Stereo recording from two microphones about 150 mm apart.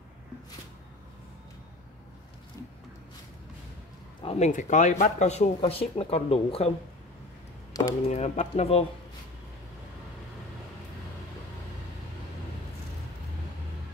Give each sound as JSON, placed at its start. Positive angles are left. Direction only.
{"t": 4.2, "sound": "speech", "side_deg": 45}
{"t": 5.6, "sound": "speech", "side_deg": 40}
{"t": 7.7, "sound": "speech", "side_deg": 25}
{"t": 8.1, "sound": "speech", "side_deg": 45}